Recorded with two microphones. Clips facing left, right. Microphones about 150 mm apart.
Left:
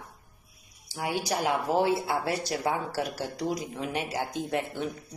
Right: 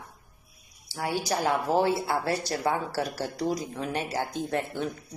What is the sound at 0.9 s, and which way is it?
Speech, 15° left (ahead or behind).